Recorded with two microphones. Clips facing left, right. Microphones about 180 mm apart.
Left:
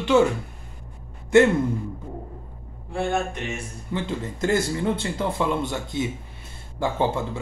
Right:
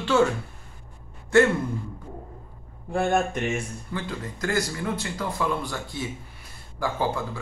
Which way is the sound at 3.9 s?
25° left (ahead or behind).